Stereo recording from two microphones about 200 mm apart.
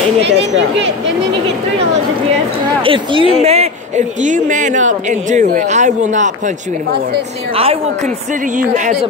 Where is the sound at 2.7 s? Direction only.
25° right (ahead or behind).